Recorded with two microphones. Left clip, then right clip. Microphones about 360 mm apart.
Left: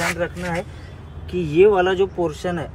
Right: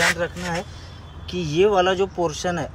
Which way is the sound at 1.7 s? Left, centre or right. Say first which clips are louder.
Left 1 dB; right.